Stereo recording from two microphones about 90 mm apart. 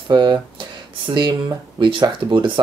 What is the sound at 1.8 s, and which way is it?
Speech, 60° right (ahead or behind).